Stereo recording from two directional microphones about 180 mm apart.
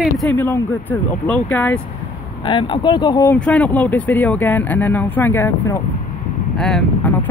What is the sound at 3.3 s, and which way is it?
Speech, 5° left (ahead or behind).